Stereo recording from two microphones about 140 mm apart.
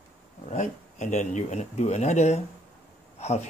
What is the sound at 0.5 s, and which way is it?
Speech, 60° left (ahead or behind).